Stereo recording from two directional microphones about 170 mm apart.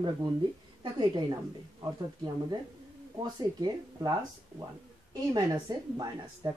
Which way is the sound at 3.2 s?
25° right (ahead or behind).